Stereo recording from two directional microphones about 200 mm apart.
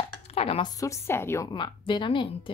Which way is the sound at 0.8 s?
10° left (ahead or behind).